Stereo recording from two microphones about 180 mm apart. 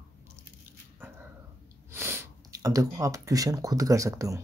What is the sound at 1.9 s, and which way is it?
Speech, 15° right (ahead or behind).